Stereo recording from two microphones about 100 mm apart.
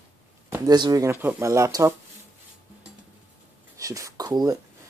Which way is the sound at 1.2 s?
30° right (ahead or behind).